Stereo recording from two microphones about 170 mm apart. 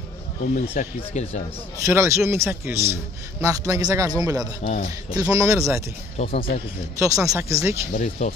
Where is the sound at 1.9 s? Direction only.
15° right (ahead or behind).